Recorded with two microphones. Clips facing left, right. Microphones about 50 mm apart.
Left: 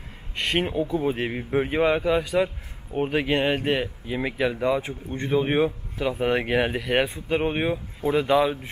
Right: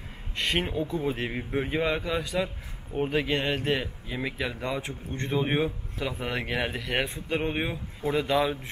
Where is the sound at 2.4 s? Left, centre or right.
Centre.